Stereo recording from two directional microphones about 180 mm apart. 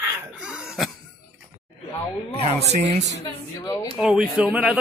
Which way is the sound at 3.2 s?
20° left (ahead or behind).